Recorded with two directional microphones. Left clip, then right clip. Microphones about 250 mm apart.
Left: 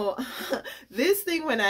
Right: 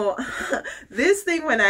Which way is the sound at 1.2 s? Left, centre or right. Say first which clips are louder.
Right 5 dB; centre.